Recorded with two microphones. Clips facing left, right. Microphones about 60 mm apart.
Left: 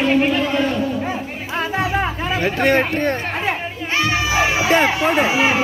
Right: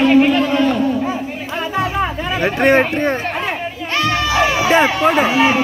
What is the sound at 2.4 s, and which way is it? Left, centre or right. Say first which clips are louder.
Speech: right 4 dB; right.